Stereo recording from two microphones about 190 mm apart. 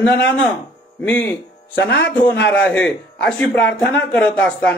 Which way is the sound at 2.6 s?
5° left (ahead or behind).